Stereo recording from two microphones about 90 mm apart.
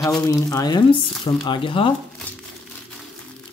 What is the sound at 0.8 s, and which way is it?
Speech, 60° left (ahead or behind).